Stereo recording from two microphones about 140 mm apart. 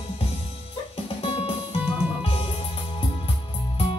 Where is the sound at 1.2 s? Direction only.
40° left (ahead or behind).